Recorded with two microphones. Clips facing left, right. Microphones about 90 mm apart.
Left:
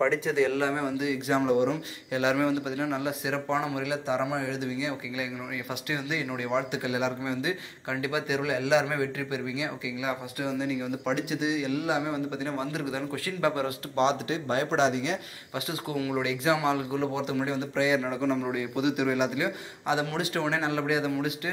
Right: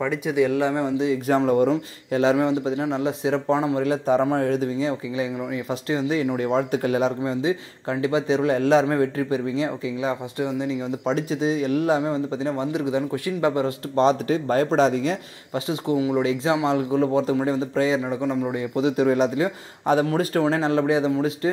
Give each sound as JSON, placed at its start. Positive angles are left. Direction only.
{"t": 0.0, "sound": "speech", "side_deg": -15}
{"t": 1.2, "sound": "speech", "side_deg": -45}
{"t": 10.4, "sound": "speech", "side_deg": -20}
{"t": 11.1, "sound": "speech", "side_deg": -35}
{"t": 12.1, "sound": "speech", "side_deg": -20}
{"t": 13.9, "sound": "speech", "side_deg": -40}
{"t": 15.5, "sound": "speech", "side_deg": -25}
{"t": 18.0, "sound": "speech", "side_deg": -15}
{"t": 18.5, "sound": "speech", "side_deg": -30}